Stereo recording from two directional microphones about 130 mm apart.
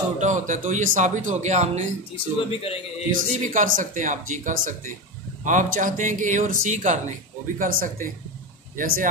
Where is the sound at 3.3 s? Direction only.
75° right (ahead or behind).